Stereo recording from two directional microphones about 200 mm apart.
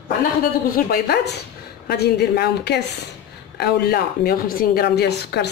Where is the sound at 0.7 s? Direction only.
50° left (ahead or behind).